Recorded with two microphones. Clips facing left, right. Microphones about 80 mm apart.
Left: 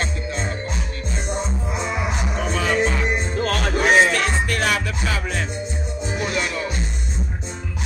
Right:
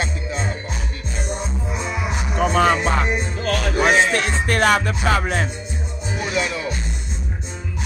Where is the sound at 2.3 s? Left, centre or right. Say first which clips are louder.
Right 6 dB; right.